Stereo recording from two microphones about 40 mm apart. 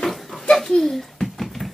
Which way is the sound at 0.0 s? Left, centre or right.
Centre.